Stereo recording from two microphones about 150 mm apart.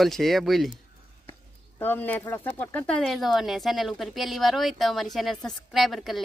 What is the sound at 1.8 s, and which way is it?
Speech, 10° left (ahead or behind).